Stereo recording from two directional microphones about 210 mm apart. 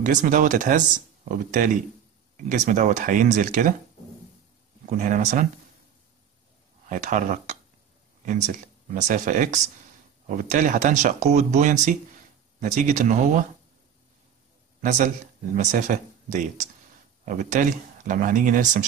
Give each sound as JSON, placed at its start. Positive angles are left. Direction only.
{"t": 0.0, "sound": "speech", "side_deg": -40}
{"t": 4.8, "sound": "speech", "side_deg": -35}
{"t": 6.9, "sound": "speech", "side_deg": -35}
{"t": 14.8, "sound": "a man's voice", "side_deg": -35}